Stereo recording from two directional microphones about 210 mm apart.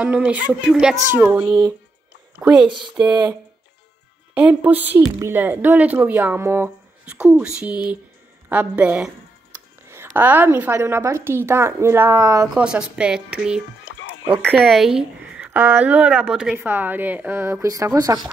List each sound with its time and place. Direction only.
0.0 s a woman's voice: 5° right (ahead or behind)
2.6 s speech: 20° right (ahead or behind)
4.3 s a woman's voice: 5° right (ahead or behind)